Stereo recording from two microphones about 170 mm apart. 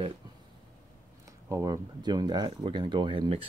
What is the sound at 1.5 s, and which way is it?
Speech, 20° right (ahead or behind).